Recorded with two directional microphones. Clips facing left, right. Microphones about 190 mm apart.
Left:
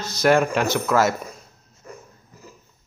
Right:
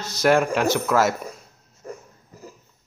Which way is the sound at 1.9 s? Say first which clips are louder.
Right 5 dB; 40° right (ahead or behind).